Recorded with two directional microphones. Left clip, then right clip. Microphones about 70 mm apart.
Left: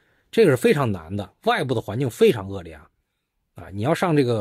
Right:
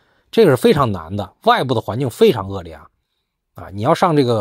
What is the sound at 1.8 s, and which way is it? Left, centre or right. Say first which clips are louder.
Speech: right 4 dB; centre.